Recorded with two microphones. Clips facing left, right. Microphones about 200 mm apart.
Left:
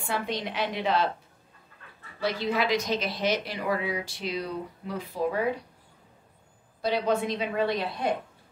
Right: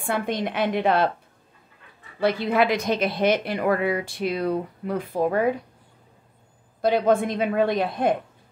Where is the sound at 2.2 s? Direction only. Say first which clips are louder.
Right 6 dB; 55° right (ahead or behind).